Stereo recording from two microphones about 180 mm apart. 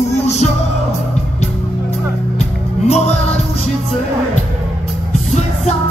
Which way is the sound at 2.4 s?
40° left (ahead or behind).